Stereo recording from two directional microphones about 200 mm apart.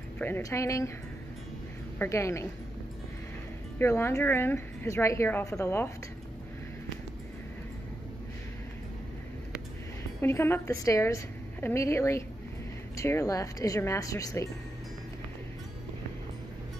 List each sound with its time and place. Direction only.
0.2 s a woman's voice: 10° left (ahead or behind)
2.0 s a woman's voice: 15° left (ahead or behind)
3.7 s a woman's voice: 10° left (ahead or behind)
10.2 s a woman's voice: 10° left (ahead or behind)